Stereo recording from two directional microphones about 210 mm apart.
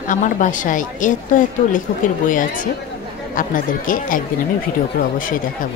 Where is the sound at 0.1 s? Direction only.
40° left (ahead or behind).